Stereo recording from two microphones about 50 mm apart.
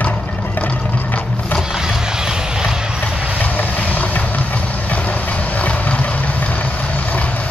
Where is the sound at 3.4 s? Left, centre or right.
Left.